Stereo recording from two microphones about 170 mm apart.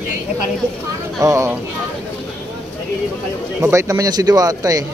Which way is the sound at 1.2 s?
15° right (ahead or behind).